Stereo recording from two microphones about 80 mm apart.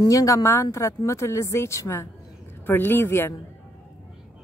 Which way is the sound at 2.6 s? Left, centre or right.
Left.